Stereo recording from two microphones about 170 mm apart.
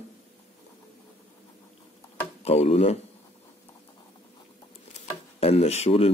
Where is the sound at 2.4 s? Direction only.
40° left (ahead or behind).